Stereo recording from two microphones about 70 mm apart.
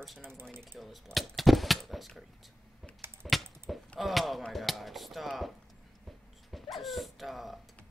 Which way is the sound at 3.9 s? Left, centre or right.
Centre.